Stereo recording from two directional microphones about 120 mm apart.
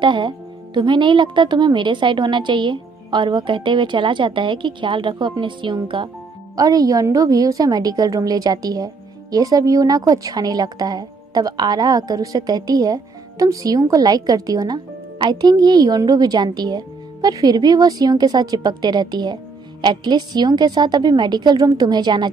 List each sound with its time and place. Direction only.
0.0 s a woman's voice: 40° right (ahead or behind)
6.5 s a woman's voice: 30° right (ahead or behind)